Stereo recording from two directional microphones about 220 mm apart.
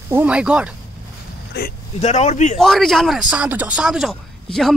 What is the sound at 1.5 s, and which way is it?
Speech, 50° left (ahead or behind).